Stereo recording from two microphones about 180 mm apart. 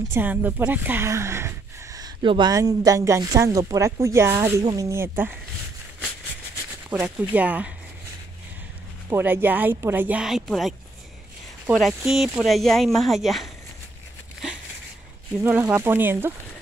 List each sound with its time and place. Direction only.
0.1 s speech: 10° right (ahead or behind)
6.9 s speech: 10° right (ahead or behind)
9.1 s speech: 10° right (ahead or behind)
15.4 s speech: 15° right (ahead or behind)